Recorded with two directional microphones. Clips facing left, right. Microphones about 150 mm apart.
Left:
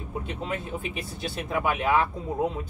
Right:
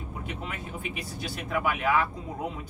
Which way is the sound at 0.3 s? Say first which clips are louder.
Left 5 dB; 30° left (ahead or behind).